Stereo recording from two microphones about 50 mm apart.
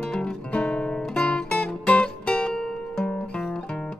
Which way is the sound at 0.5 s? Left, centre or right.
Left.